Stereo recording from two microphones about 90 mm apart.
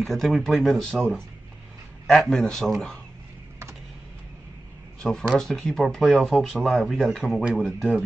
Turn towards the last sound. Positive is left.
turn(degrees=0)  # may be behind; listen again after turning